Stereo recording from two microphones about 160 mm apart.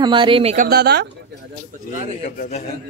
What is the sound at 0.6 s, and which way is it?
Speech, 80° right.